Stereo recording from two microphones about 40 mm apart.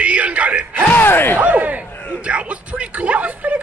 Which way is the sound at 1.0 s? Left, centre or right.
Left.